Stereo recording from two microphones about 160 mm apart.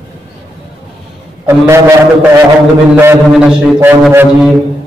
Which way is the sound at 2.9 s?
15° right (ahead or behind).